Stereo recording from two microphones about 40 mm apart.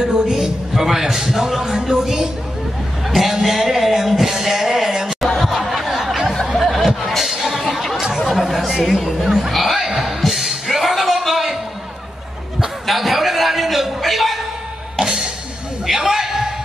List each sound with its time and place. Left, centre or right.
0.0 s a man's voice: centre
3.1 s music: centre
5.4 s a sound: centre
7.0 s chatter: centre
9.0 s a man's voice: centre
9.8 s music: centre
12.8 s a sound: centre
15.0 s music: centre
15.9 s a sound: centre